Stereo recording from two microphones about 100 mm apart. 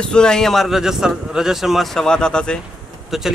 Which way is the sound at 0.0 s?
10° left (ahead or behind).